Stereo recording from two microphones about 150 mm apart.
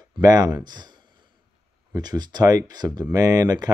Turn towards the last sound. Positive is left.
turn(degrees=-25)  # may be behind; listen again after turning